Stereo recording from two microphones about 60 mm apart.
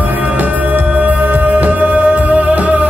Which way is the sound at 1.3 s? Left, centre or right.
Right.